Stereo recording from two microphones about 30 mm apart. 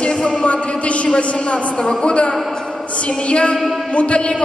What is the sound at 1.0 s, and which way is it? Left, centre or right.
Speech, left.